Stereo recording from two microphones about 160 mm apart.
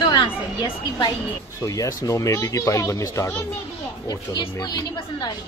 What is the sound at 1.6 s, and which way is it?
Speech, 20° left (ahead or behind).